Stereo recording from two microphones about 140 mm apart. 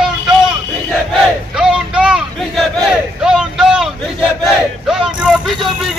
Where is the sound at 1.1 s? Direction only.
5° right (ahead or behind).